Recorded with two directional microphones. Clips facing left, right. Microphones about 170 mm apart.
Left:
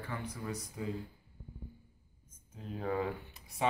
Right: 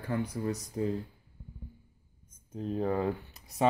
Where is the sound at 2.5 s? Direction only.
35° right (ahead or behind).